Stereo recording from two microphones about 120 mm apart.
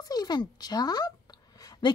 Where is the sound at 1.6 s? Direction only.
30° left (ahead or behind).